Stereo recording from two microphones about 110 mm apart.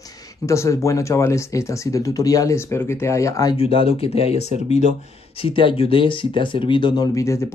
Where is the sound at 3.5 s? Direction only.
55° left (ahead or behind); by 4.8 s 75° left (ahead or behind).